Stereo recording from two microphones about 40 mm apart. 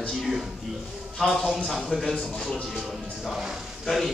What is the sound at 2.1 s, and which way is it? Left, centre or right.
Speech, left.